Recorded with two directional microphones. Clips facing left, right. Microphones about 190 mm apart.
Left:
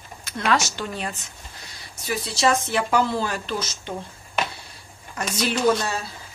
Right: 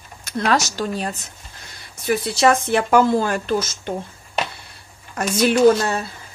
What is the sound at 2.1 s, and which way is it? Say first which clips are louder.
A woman's voice: right 5 dB; 55° right (ahead or behind).